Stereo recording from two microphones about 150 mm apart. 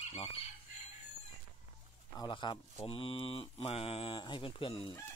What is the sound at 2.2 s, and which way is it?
Speech, 30° left (ahead or behind).